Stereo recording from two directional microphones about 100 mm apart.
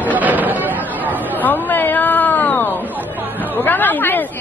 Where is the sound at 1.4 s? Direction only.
20° left (ahead or behind).